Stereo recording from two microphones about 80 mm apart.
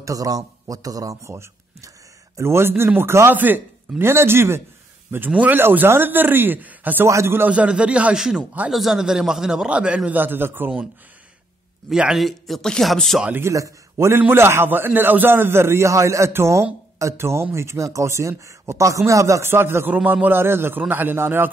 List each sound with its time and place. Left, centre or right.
0.0 s a man's voice: right
5.3 s a man's voice: right
7.1 s a man's voice: right
7.4 s speech: centre
10.1 s a man's voice: right
11.9 s speech: centre
13.5 s a man's voice: right